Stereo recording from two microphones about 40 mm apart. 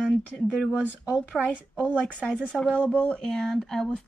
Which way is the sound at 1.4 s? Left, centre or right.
Right.